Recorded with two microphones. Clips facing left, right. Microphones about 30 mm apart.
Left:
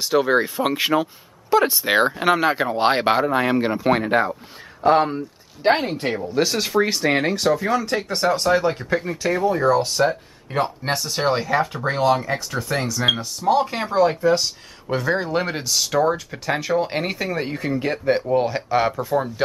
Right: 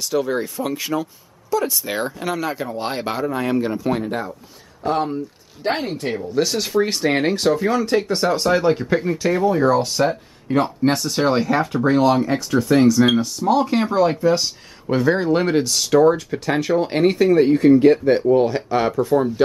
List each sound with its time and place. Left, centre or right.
0.0 s speech: left
4.8 s speech: left
6.1 s speech: centre